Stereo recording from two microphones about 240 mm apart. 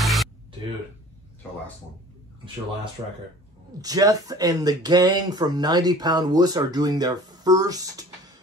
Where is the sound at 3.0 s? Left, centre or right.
Centre.